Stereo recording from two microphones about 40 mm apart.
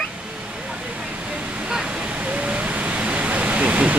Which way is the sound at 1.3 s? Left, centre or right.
Right.